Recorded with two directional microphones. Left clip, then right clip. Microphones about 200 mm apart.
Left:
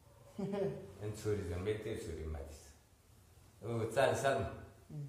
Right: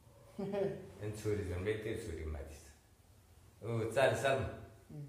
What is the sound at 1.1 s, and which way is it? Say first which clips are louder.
Speech: even; 10° left (ahead or behind).